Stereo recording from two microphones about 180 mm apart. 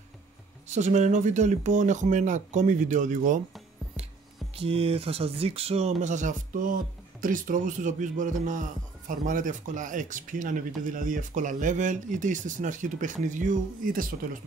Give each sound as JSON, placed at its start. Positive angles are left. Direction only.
{"t": 0.7, "sound": "speech", "side_deg": -40}
{"t": 4.6, "sound": "speech", "side_deg": -30}